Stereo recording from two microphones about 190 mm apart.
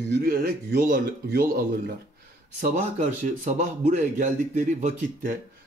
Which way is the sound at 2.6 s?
40° right (ahead or behind).